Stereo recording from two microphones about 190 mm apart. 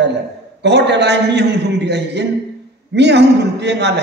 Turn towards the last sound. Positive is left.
turn(degrees=-65)  # may be behind; listen again after turning